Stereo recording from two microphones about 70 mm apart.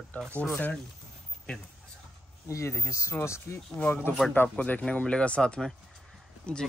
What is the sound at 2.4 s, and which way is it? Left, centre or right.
Speech, left.